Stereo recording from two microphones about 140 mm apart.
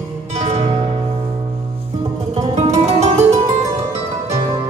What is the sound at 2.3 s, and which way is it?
Music, 50° right (ahead or behind).